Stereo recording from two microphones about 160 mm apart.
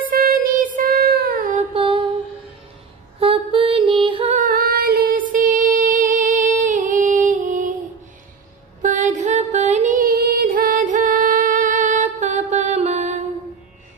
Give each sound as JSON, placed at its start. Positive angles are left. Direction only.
{"t": 0.1, "sound": "music", "side_deg": -65}
{"t": 1.8, "sound": "mantra", "side_deg": -30}
{"t": 3.2, "sound": "mantra", "side_deg": -35}
{"t": 4.4, "sound": "music", "side_deg": -65}
{"t": 8.8, "sound": "music", "side_deg": -50}